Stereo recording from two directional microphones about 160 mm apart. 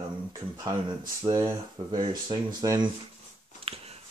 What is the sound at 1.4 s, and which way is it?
Speech, 30° right (ahead or behind).